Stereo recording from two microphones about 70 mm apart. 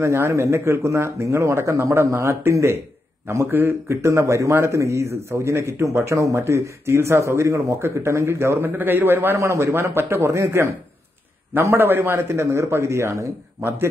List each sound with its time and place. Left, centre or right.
0.0 s speech: right
11.6 s speech: right
13.6 s speech: right